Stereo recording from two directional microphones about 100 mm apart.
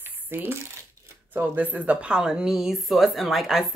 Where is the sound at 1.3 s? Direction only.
20° right (ahead or behind); by 3.7 s centre (ahead or behind).